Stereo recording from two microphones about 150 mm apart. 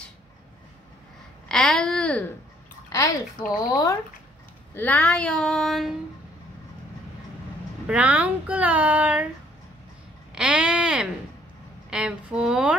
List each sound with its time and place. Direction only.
1.5 s speech: 5° left (ahead or behind)
3.5 s speech: 25° left (ahead or behind)
4.7 s speech: 10° left (ahead or behind)
7.8 s speech: 5° right (ahead or behind)
10.3 s a sound: 10° right (ahead or behind)
11.9 s speech: 5° right (ahead or behind)